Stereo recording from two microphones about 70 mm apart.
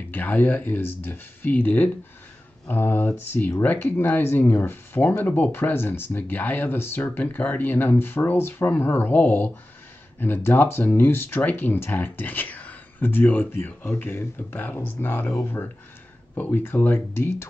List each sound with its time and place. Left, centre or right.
0.1 s speech: left